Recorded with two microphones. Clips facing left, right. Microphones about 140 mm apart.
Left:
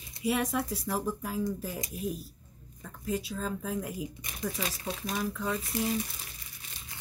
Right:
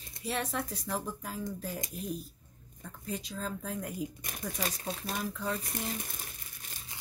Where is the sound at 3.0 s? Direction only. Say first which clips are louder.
Left 5 dB; 5° left (ahead or behind).